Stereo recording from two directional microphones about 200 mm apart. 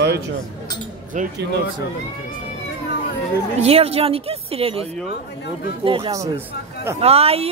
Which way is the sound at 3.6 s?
30° right (ahead or behind).